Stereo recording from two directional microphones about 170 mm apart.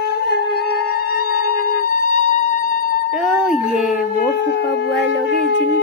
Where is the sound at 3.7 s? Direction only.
10° right (ahead or behind).